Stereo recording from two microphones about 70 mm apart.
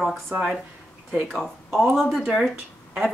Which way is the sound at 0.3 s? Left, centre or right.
Right.